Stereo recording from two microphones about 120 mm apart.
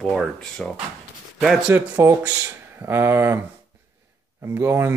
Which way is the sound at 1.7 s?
25° right (ahead or behind).